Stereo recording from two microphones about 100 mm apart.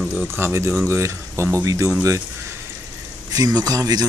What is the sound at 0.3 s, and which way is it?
Speech, 25° right (ahead or behind).